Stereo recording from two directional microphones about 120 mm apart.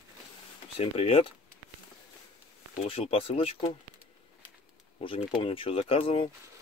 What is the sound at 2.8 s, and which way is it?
Speech, 55° left (ahead or behind).